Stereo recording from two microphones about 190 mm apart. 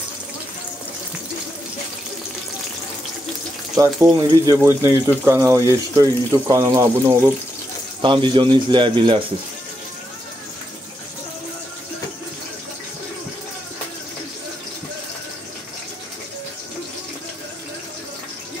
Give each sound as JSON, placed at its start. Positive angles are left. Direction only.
{"t": 3.7, "sound": "a man's voice", "side_deg": -15}